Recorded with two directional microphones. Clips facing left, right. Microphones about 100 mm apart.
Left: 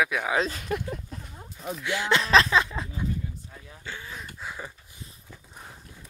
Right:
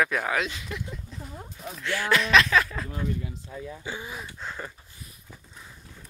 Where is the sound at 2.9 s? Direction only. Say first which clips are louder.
Right 1 dB; 85° right.